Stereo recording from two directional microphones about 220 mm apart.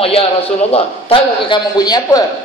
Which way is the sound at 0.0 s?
25° left (ahead or behind).